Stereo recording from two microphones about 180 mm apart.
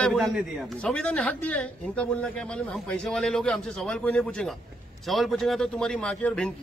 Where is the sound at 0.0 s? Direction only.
Centre (ahead or behind).